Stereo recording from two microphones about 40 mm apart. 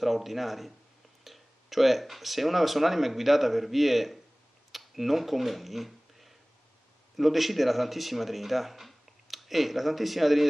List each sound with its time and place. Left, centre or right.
0.0 s speech: centre